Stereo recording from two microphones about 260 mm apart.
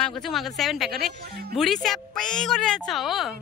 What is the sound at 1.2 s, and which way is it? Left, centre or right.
Speech, right.